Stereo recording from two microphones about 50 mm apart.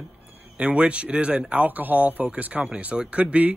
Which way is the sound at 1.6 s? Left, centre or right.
Right.